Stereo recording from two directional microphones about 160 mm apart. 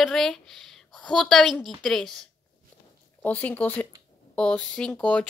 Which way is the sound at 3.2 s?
10° left (ahead or behind).